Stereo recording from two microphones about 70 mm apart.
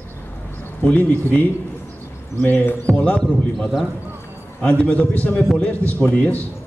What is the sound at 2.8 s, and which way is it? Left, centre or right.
Speech, centre.